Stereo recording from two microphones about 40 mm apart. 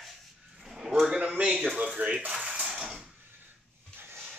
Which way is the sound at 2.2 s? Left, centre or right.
Right.